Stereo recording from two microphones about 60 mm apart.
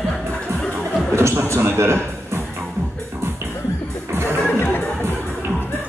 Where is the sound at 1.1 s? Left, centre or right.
Right.